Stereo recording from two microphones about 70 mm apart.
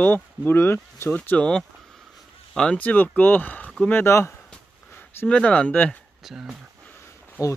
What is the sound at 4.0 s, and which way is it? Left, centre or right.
Speech, left.